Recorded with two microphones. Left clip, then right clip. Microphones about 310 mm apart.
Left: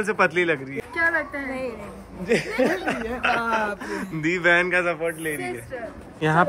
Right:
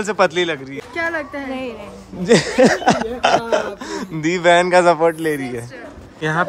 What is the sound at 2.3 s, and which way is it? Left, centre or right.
Speech, right.